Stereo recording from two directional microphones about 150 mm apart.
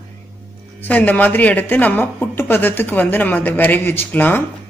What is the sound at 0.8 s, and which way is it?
Speech, 10° left (ahead or behind).